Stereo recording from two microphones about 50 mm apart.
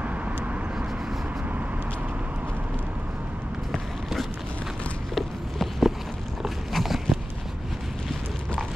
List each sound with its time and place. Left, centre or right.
0.0 s vehicle: right
3.7 s run: centre
5.1 s a sound: centre